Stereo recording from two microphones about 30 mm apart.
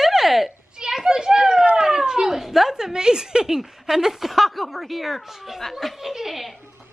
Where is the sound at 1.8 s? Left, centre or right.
Centre.